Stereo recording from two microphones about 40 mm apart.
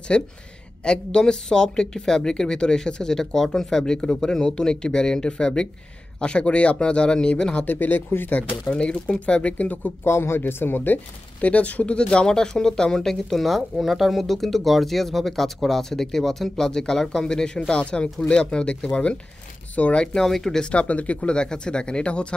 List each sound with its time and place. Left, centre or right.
0.1 s speech: left
7.6 s speech: left
8.6 s speech: left
10.0 s speech: left
10.4 s speech: left
11.4 s speech: left
12.0 s speech: left
13.6 s speech: centre; by 20.1 s left
20.2 s speech: centre
20.7 s speech: left